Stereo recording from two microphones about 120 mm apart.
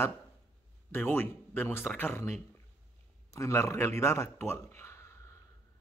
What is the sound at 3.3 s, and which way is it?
A man's voice, 25° left (ahead or behind).